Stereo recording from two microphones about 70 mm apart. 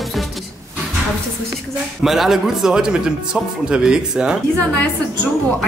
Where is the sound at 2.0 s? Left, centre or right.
Centre.